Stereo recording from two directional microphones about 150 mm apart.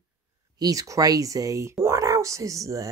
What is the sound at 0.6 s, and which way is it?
Speech, 20° right (ahead or behind).